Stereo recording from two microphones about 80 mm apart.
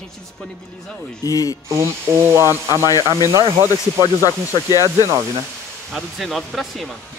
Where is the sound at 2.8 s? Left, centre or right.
Left.